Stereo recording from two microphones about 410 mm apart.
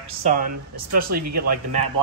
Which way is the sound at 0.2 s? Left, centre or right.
Centre.